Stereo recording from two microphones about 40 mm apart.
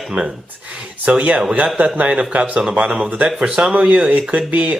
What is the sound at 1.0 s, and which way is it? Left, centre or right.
Speech, right.